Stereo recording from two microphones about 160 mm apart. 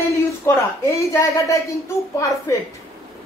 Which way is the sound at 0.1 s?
20° left (ahead or behind).